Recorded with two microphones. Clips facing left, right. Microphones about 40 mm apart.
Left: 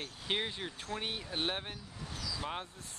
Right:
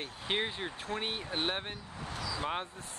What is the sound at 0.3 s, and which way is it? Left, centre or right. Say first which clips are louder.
Speech: right 2 dB; centre.